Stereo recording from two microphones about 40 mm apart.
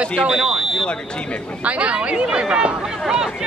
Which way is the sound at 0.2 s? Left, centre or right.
Centre.